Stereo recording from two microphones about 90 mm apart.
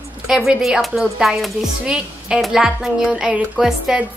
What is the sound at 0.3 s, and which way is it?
A woman's voice, 5° right (ahead or behind).